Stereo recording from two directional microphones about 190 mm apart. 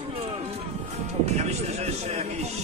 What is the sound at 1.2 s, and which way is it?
Music, 35° right (ahead or behind).